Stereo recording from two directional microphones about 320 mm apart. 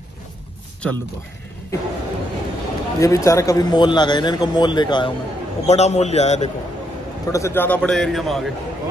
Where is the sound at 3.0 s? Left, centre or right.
Centre.